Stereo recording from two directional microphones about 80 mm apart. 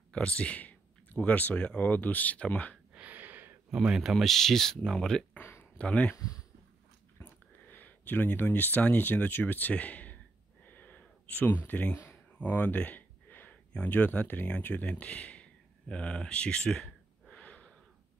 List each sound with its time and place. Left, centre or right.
0.1 s speech: centre
2.9 s gasp: centre
3.7 s speech: centre
5.4 s a sound: left
5.8 s speech: centre
6.1 s speech: left
7.2 s speech: left
10.6 s a sound: left
12.4 s speech: centre
15.9 s a sound: centre